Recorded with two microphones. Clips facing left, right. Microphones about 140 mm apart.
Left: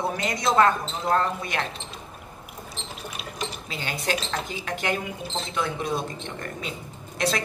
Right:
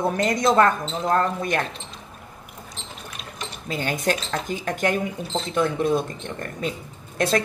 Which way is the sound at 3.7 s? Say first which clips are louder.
Right 6 dB; 45° right (ahead or behind).